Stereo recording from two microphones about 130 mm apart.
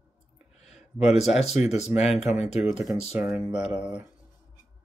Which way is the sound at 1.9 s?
15° right (ahead or behind).